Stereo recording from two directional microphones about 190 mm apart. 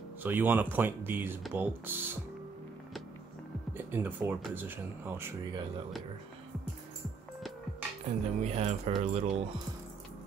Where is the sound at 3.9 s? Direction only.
10° right (ahead or behind).